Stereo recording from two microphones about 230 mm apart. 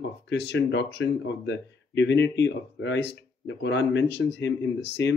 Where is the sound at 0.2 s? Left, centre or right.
Left.